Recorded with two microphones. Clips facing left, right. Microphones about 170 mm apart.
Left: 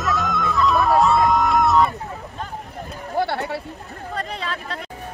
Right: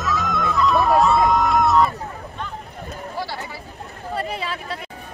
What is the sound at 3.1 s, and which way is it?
Sheep, 60° left (ahead or behind).